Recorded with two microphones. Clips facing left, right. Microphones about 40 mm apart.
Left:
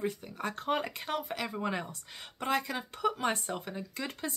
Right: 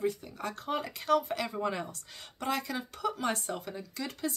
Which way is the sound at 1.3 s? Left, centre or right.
Centre.